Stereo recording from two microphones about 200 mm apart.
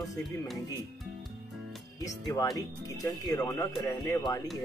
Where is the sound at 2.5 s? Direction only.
15° left (ahead or behind).